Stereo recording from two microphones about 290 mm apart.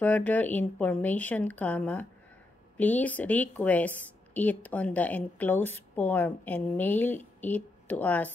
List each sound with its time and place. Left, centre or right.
0.0 s a woman's voice: centre